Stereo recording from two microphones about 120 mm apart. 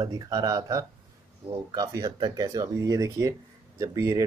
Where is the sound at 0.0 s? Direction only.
35° right (ahead or behind).